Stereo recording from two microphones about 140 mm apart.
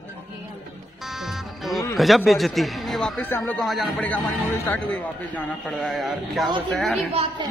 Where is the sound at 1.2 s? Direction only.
Centre (ahead or behind).